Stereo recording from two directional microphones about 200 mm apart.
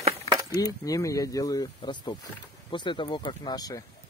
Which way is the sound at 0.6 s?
15° left (ahead or behind).